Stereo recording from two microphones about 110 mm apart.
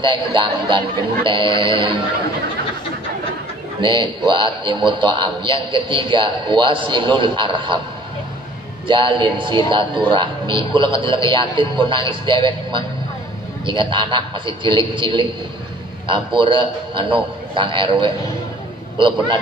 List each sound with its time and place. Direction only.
0.0 s a man's voice: 45° right (ahead or behind)
3.8 s a man's voice: 45° right (ahead or behind)
8.8 s a man's voice: 50° right (ahead or behind)